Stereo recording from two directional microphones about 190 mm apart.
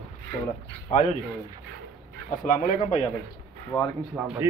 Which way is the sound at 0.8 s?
35° left (ahead or behind).